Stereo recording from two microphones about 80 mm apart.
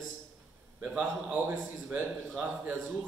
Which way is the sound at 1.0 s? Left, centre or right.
Centre.